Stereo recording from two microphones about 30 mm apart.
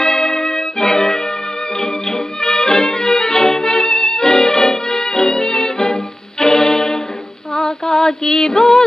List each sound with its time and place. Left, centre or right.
0.0 s music: centre
7.5 s female singing: centre